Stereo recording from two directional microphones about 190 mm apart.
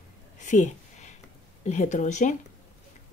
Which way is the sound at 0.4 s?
40° left (ahead or behind).